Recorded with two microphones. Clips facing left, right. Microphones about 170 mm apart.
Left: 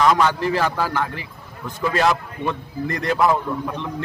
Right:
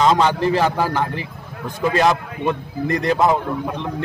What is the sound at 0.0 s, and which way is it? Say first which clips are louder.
A man's voice: right 2 dB; 20° right (ahead or behind).